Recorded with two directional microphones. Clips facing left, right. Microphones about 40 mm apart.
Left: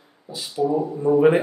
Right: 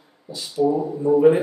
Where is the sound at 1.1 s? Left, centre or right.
Left.